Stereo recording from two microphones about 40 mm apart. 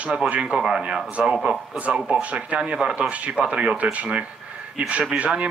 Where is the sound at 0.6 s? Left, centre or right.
Centre.